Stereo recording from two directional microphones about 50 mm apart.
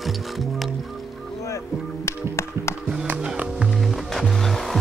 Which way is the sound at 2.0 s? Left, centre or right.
Left.